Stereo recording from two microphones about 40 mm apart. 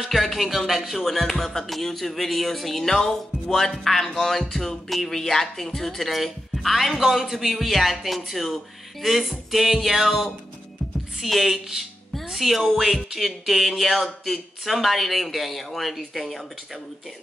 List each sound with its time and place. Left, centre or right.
0.0 s speech: centre